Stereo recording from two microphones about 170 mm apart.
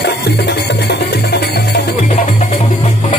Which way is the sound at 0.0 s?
80° left.